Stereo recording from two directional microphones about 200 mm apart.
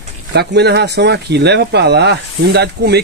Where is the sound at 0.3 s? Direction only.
55° right (ahead or behind).